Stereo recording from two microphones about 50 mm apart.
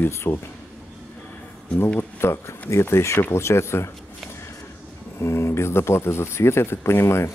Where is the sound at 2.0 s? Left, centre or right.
Left.